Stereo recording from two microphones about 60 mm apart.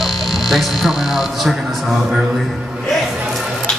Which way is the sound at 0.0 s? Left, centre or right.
Centre.